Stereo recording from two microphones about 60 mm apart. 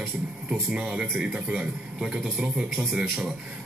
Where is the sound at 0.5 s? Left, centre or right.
Centre.